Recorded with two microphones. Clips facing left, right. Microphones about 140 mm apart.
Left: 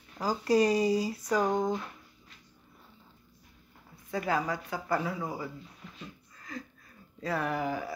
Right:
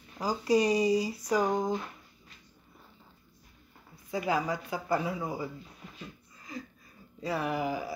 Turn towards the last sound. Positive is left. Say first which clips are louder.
# even
turn(degrees=-10)  # may be behind; listen again after turning